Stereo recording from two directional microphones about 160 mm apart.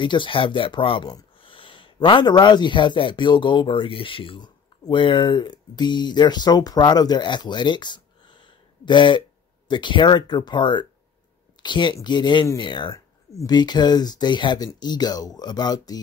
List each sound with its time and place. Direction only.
0.0 s speech: 30° left (ahead or behind)